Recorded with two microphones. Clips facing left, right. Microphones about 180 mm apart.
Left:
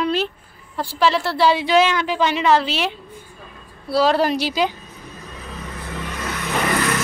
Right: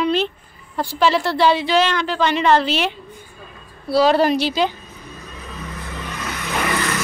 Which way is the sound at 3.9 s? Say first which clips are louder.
Right 2 dB; centre (ahead or behind).